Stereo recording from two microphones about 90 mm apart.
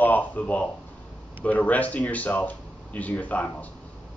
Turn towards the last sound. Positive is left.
turn(degrees=15)  # may be behind; listen again after turning